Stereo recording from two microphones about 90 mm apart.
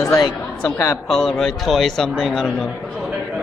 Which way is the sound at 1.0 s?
5° left (ahead or behind).